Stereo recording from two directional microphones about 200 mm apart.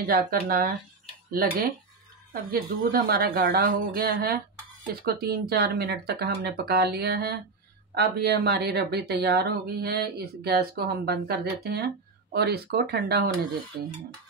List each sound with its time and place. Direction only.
0.0 s speech: 50° right (ahead or behind)